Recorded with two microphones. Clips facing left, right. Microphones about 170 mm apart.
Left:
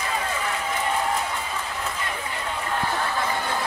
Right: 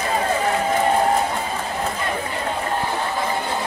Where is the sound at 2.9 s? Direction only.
20° right (ahead or behind).